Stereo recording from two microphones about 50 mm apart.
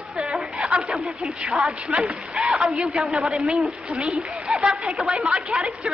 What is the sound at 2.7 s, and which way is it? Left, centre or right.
A woman's voice, centre.